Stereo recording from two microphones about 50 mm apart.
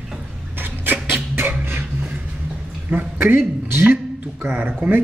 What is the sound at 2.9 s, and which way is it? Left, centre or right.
Speech, right.